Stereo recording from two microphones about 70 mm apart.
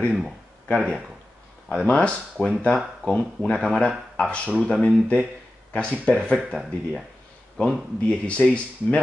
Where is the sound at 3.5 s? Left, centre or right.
Centre.